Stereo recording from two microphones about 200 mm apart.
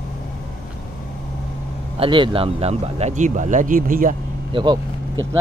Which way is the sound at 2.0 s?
25° right (ahead or behind).